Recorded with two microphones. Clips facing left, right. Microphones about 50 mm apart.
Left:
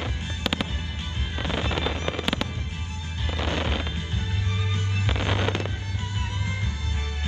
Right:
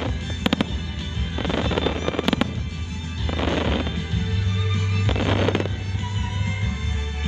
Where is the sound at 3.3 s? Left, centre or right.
Right.